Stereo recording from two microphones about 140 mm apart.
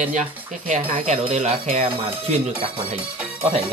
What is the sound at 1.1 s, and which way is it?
Speech, 55° right (ahead or behind).